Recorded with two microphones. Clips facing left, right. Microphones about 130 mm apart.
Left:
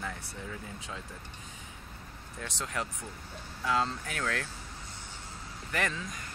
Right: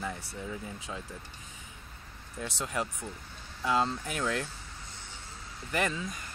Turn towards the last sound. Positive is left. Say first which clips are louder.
# right 2 dB
turn(degrees=-15)  # may be behind; listen again after turning